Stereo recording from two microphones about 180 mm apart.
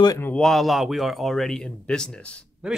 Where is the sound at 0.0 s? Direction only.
20° left (ahead or behind).